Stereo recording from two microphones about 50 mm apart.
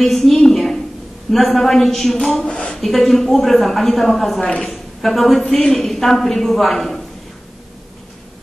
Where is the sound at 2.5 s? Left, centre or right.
Left.